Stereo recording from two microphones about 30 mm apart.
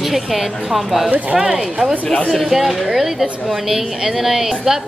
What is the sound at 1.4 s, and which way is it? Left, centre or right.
Speech, right.